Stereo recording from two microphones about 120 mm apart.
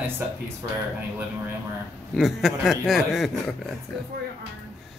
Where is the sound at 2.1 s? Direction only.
Centre (ahead or behind).